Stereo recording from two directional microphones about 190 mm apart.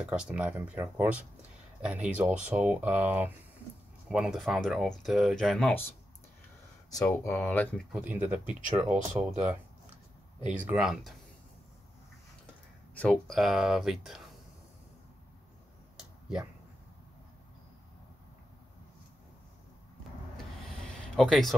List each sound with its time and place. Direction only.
0.0 s speech: 5° right (ahead or behind)
6.9 s speech: 15° left (ahead or behind)
7.9 s speech: 5° right (ahead or behind)
8.5 s speech: 45° right (ahead or behind)
10.4 s speech: 5° right (ahead or behind)
12.9 s speech: 5° left (ahead or behind)
16.0 s a sound: 5° right (ahead or behind)
21.2 s speech: centre (ahead or behind)